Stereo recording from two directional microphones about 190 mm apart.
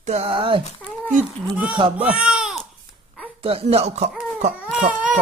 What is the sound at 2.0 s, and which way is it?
Speech, 5° right (ahead or behind).